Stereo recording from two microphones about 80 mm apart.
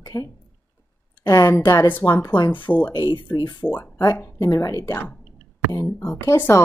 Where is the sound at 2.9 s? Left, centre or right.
Left.